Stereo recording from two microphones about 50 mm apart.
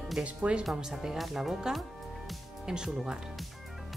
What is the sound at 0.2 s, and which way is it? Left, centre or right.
Speech, right.